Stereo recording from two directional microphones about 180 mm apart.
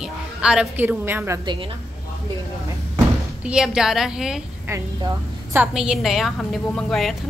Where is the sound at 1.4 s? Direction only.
25° right (ahead or behind).